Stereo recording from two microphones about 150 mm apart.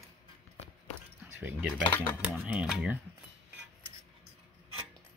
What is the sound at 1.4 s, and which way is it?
Speech, 10° right (ahead or behind).